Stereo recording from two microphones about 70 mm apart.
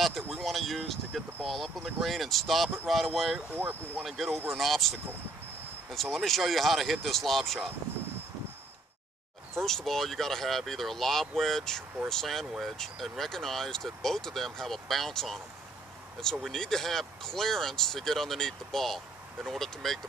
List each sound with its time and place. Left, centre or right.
0.0 s speech: centre
3.3 s speech: right
4.0 s speech: centre
5.9 s speech: centre
9.6 s speech: centre